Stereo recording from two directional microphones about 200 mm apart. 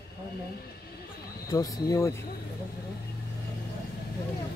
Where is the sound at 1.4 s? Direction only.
15° left (ahead or behind).